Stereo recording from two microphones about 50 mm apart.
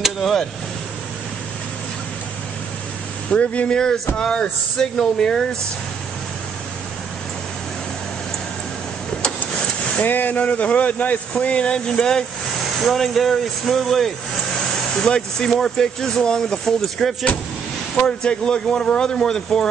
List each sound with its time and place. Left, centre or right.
0.0 s a sound: centre
3.3 s speech: left
9.9 s speech: left; by 19.6 s centre